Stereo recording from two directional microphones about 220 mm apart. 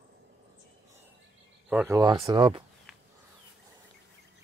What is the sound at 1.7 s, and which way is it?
Speech, 10° right (ahead or behind).